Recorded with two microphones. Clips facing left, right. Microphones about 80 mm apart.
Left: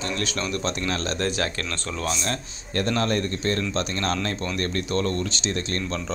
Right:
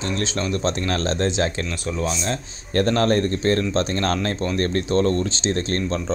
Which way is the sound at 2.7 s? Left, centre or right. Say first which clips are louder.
Right 5 dB; right.